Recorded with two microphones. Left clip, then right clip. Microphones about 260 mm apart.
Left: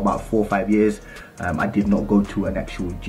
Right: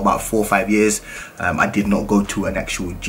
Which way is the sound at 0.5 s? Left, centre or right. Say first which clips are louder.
Right 5 dB; centre.